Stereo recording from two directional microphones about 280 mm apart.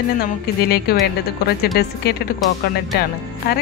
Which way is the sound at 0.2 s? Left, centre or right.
Left.